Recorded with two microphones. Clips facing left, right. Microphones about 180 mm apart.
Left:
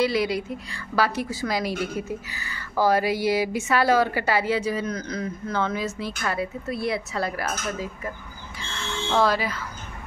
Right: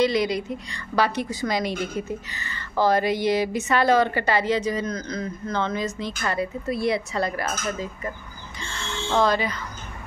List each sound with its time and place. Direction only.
0.0 s a woman's voice: 5° left (ahead or behind)
9.1 s speech: 5° left (ahead or behind)